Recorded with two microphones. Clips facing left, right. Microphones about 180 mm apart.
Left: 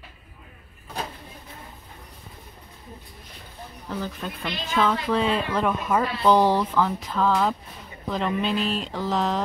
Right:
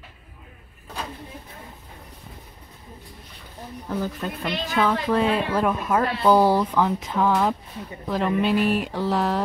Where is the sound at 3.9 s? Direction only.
10° right (ahead or behind).